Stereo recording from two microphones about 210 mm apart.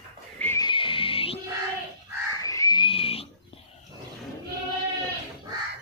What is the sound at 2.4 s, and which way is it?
Pig, 15° left (ahead or behind).